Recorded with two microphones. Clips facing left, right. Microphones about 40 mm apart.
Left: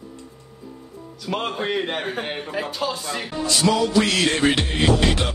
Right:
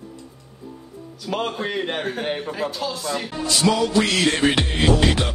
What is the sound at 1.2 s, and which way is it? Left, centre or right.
A man's voice, centre.